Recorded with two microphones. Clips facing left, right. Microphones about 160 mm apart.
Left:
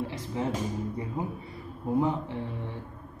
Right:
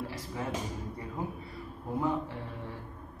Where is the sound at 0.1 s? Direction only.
20° left (ahead or behind).